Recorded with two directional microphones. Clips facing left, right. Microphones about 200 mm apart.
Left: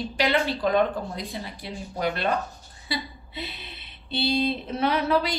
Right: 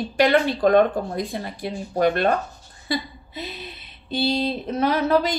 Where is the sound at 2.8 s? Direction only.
45° right (ahead or behind).